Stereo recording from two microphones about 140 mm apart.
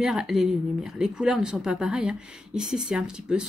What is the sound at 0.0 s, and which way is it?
A woman's voice, 5° right (ahead or behind).